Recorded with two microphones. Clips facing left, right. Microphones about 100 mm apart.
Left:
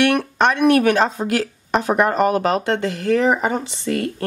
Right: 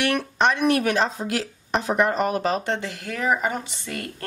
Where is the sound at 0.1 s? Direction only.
55° left (ahead or behind).